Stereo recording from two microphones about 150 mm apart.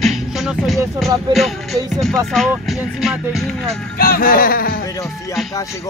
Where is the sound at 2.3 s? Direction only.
Centre (ahead or behind).